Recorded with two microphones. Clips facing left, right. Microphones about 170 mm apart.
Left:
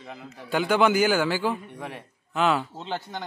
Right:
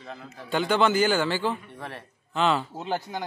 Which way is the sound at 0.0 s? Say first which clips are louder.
Even; 10° left (ahead or behind).